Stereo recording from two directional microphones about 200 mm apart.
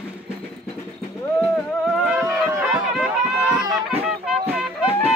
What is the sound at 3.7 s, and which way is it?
Music, 5° right (ahead or behind).